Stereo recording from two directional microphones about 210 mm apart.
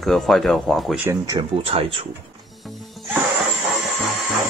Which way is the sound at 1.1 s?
20° right (ahead or behind).